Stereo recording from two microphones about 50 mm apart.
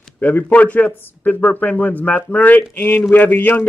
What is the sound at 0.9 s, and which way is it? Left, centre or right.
Speech, left.